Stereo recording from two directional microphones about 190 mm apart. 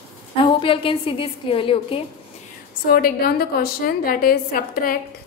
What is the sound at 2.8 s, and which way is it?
A woman's voice, 50° left (ahead or behind).